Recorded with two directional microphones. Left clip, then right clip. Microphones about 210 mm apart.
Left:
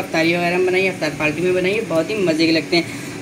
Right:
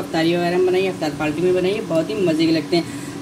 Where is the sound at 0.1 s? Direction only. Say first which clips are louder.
Left 1 dB; 30° right (ahead or behind).